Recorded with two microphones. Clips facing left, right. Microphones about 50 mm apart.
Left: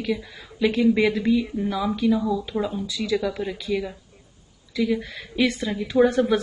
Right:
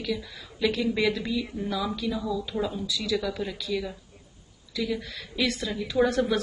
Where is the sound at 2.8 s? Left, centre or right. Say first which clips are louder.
Left 3 dB; left.